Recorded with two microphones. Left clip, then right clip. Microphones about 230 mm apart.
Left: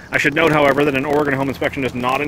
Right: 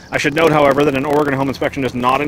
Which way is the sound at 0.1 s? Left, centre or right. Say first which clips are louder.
Right 1 dB; centre.